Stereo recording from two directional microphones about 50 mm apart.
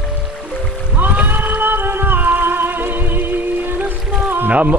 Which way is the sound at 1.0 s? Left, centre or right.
Right.